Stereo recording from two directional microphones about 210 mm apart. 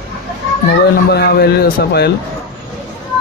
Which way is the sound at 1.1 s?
50° left (ahead or behind).